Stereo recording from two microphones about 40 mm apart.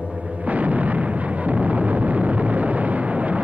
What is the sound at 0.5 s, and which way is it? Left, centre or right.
Artillery fire, right.